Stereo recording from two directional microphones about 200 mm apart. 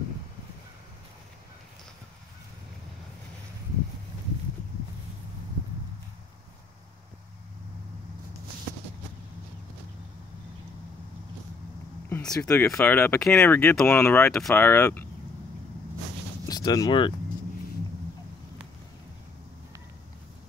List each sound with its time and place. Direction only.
12.1 s a sound: 5° left (ahead or behind)
12.4 s speech: 15° left (ahead or behind)
16.4 s speech: 20° left (ahead or behind)